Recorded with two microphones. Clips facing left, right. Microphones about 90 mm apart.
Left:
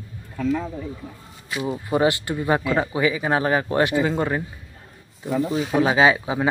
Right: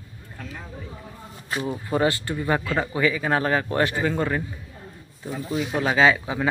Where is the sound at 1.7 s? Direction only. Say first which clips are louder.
Left 3 dB; 15° left (ahead or behind).